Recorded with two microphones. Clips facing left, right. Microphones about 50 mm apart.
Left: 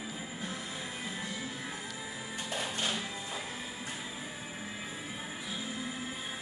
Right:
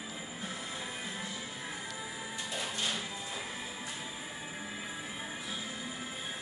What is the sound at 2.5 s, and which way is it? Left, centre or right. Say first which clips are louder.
Music: left 2 dB; left.